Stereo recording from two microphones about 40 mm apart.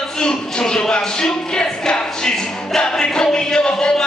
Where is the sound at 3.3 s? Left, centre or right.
Left.